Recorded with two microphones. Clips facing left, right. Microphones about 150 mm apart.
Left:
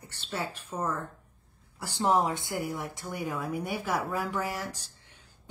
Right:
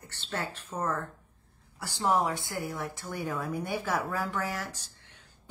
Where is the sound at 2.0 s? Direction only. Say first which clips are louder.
Left 1 dB; 20° left (ahead or behind).